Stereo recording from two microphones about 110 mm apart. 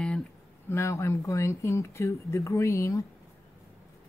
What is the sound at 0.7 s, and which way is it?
Speech, 25° left (ahead or behind).